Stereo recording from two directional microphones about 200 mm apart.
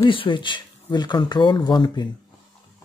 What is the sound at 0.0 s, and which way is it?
Speech, 25° left (ahead or behind).